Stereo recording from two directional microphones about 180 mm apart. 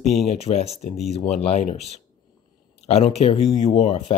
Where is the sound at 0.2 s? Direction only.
35° left (ahead or behind).